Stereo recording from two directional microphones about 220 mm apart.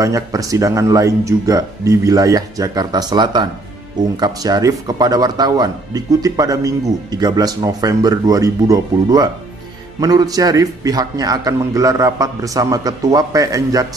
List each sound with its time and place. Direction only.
0.0 s speech: 15° right (ahead or behind)